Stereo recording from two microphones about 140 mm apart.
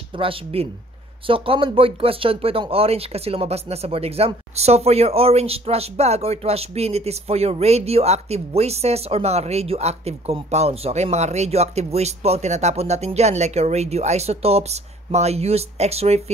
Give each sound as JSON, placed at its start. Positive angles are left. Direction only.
{"t": 0.2, "sound": "speech", "side_deg": -40}